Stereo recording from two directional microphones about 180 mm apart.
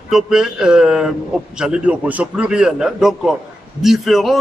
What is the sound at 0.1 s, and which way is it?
Speech, 5° right (ahead or behind).